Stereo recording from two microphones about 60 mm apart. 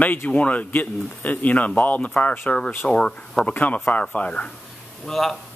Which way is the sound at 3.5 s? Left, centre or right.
Left.